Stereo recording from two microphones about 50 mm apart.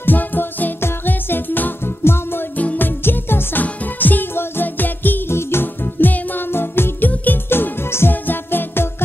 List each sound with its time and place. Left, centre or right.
0.0 s music: left
0.7 s music: left
2.5 s music: left
2.8 s music: left
3.6 s music: left
5.3 s music: left
8.1 s music: left